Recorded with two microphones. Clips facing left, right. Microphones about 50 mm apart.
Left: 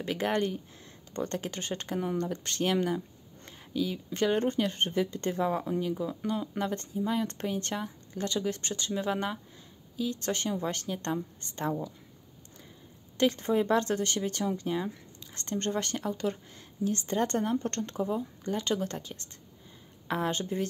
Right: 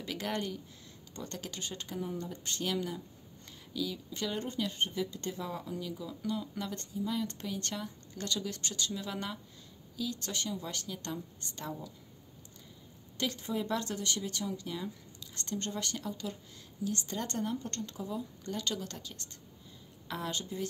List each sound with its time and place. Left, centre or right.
0.0 s speech: left
2.6 s speech: left
13.4 s speech: left
18.4 s speech: left